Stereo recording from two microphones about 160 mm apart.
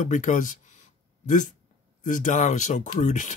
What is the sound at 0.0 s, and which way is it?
Speech, 50° left (ahead or behind).